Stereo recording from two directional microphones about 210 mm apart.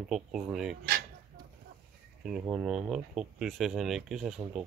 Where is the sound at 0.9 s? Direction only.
45° right (ahead or behind).